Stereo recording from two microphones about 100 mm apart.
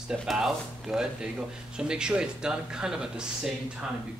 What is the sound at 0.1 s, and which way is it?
Speech, 5° right (ahead or behind).